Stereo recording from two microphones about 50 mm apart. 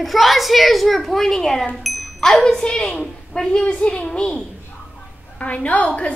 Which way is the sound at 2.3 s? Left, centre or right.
Centre.